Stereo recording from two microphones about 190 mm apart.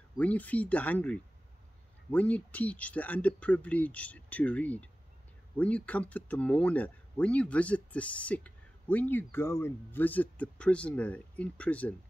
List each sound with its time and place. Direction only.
0.2 s speech: 10° left (ahead or behind)